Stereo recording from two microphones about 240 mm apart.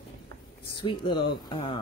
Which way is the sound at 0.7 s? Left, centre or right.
Left.